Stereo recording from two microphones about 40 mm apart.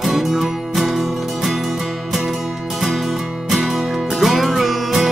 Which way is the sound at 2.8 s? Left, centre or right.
Centre.